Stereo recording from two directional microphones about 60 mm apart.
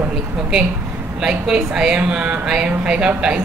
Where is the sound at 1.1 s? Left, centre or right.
Centre.